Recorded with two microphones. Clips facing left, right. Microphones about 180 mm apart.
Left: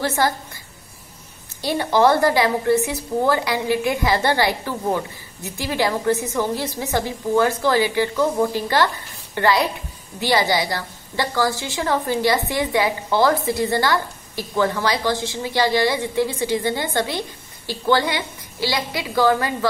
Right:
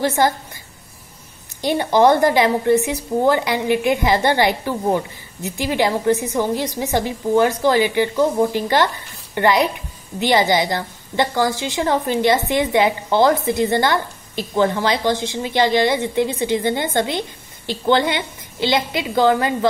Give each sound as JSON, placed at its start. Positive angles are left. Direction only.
{"t": 0.0, "sound": "a woman's voice", "side_deg": -20}
{"t": 1.6, "sound": "a woman's voice", "side_deg": -20}